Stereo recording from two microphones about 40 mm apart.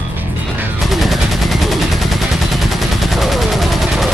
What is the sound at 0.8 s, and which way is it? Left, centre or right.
Gunshot, centre.